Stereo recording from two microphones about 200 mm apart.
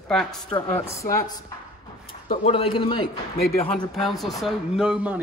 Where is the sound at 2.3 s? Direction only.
30° left (ahead or behind).